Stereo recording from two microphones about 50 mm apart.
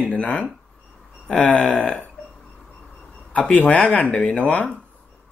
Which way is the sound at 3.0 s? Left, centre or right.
Centre.